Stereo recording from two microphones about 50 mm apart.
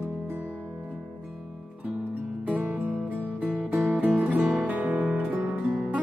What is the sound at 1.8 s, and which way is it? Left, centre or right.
Music, right.